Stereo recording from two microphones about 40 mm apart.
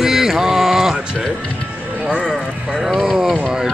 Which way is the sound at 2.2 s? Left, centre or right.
Centre.